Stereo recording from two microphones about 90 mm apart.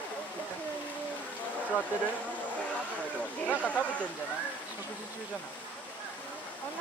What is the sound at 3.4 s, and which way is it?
Speech, 15° left (ahead or behind).